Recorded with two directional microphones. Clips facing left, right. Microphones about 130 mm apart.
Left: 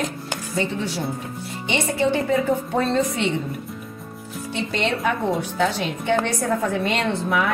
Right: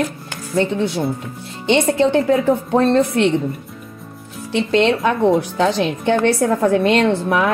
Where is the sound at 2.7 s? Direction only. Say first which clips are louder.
Right 7 dB; 65° right (ahead or behind).